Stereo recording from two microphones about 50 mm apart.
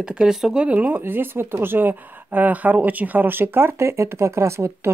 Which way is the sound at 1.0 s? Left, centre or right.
Right.